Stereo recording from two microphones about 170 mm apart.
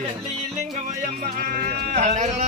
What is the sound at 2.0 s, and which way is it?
Speech, 45° right (ahead or behind).